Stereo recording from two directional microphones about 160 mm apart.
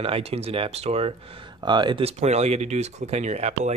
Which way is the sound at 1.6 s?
30° right (ahead or behind).